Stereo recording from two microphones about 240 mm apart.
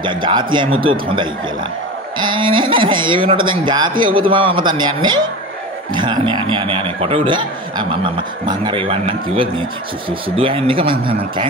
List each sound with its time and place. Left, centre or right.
0.0 s a man's voice: centre